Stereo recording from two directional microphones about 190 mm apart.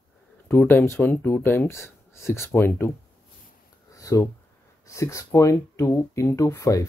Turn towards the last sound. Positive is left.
turn(degrees=15)  # may be behind; listen again after turning